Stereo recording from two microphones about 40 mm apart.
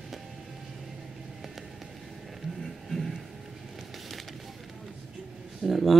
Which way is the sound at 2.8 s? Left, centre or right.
Centre.